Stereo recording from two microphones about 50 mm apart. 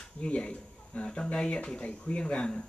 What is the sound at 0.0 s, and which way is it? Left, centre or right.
Speech, centre.